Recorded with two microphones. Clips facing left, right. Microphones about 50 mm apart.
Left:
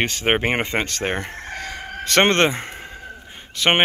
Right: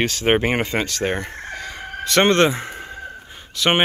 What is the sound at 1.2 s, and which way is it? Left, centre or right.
Chicken, left.